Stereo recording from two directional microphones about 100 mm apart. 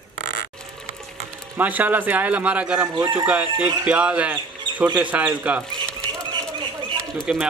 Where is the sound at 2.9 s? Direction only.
40° right (ahead or behind).